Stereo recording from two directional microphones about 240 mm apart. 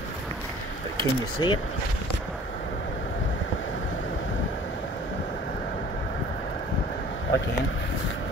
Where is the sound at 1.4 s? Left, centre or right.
Centre.